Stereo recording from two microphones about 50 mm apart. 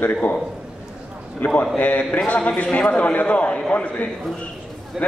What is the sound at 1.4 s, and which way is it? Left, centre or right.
A man's voice, left.